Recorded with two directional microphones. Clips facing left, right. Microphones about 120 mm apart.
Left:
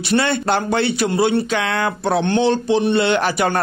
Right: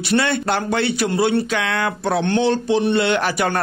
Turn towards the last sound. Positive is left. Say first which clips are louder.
# left 2 dB
turn(degrees=25)  # may be behind; listen again after turning